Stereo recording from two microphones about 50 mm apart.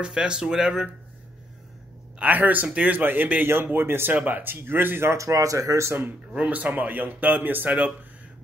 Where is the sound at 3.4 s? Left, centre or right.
Right.